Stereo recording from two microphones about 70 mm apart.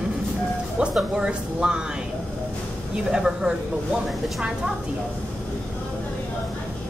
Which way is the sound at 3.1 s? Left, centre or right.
Centre.